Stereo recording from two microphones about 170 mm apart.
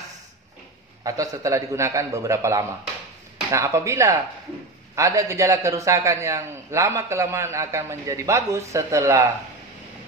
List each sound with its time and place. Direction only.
1.0 s a man's voice: 20° right (ahead or behind)